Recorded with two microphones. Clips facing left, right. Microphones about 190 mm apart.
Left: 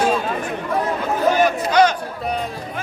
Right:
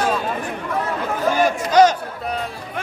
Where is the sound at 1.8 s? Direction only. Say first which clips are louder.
Right 2 dB; 40° right (ahead or behind).